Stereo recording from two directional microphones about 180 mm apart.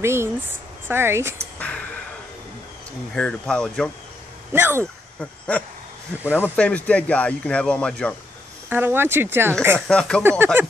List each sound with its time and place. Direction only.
0.0 s speech: 15° right (ahead or behind)
1.6 s a sound: 5° left (ahead or behind)
3.2 s speech: 5° left (ahead or behind)
4.5 s speech: 10° right (ahead or behind)
6.3 s speech: 10° left (ahead or behind)
8.6 s speech: 10° right (ahead or behind)
9.8 s speech: 5° left (ahead or behind)
10.4 s speech: 10° right (ahead or behind)